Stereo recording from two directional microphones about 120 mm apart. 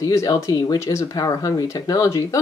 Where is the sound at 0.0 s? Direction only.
30° left (ahead or behind).